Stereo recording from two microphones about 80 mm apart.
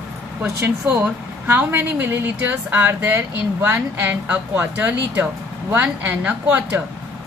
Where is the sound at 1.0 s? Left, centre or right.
Right.